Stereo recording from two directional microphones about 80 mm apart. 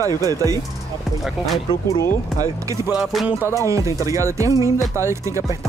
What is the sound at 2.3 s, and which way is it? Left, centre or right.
Speech, right.